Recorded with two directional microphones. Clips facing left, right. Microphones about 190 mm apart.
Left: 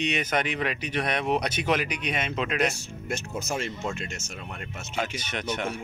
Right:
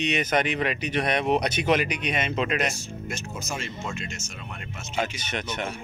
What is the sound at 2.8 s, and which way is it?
Speech, 60° left (ahead or behind).